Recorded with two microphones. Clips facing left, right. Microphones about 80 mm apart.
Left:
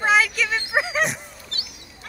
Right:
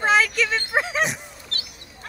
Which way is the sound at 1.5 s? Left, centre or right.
Right.